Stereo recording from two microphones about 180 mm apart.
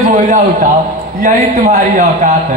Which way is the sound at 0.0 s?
40° right (ahead or behind).